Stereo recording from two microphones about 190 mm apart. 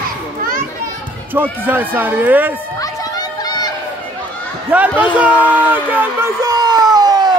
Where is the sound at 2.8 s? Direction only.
20° left (ahead or behind).